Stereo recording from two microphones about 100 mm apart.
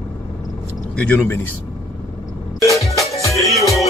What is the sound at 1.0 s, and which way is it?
Speech, 20° left (ahead or behind).